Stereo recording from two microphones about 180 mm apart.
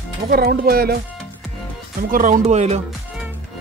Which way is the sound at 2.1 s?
45° right (ahead or behind).